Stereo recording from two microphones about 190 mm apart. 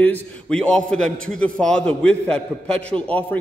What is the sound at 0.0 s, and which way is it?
A man's voice, 10° left (ahead or behind).